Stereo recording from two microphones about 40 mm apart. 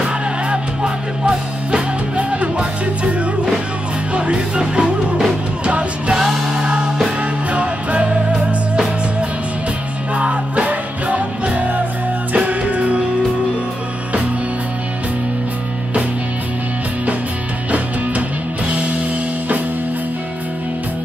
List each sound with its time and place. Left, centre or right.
0.0 s music: right
6.1 s music: centre
7.5 s music: right
10.1 s music: right
17.6 s music: right